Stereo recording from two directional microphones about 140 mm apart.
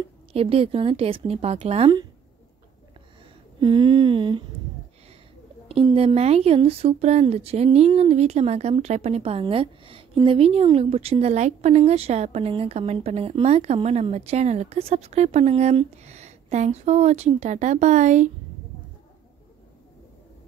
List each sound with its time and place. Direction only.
0.3 s speech: 40° right (ahead or behind)
3.6 s humming: 35° right (ahead or behind)
5.7 s speech: 45° right (ahead or behind); by 18.3 s 60° right (ahead or behind)